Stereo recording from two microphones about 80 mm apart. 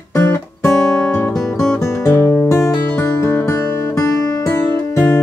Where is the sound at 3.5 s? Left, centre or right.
Left.